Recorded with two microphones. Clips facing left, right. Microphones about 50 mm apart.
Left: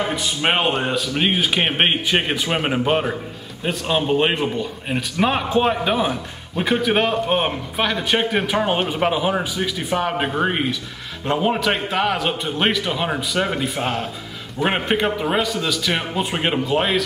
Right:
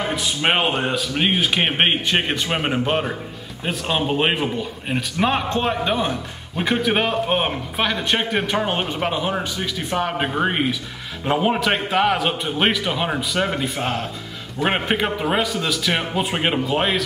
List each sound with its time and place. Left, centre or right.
0.0 s a man's voice: centre